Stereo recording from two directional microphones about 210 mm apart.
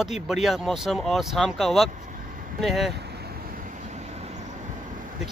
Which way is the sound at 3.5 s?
35° right (ahead or behind).